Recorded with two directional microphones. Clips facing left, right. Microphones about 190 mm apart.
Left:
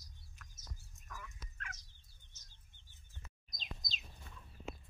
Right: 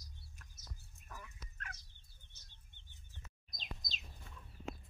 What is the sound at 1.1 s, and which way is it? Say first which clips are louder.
Fowl: left 1 dB; 35° right (ahead or behind).